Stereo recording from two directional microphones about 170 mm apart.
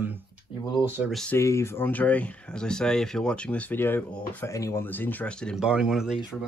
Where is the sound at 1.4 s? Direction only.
15° left (ahead or behind); by 6.1 s 5° right (ahead or behind).